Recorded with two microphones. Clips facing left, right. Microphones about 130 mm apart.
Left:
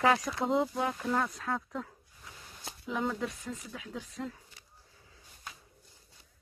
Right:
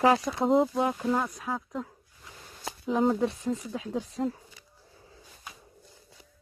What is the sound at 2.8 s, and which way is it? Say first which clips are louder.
Speech: right 8 dB; 35° right (ahead or behind).